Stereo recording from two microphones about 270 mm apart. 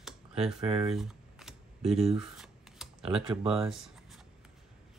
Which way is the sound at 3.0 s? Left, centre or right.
Right.